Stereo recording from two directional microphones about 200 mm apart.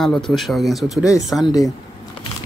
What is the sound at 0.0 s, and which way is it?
Speech, centre (ahead or behind).